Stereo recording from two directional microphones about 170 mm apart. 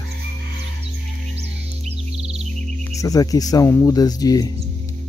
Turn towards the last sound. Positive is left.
turn(degrees=20)  # may be behind; listen again after turning